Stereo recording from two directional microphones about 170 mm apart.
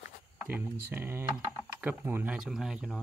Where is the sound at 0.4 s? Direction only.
10° right (ahead or behind).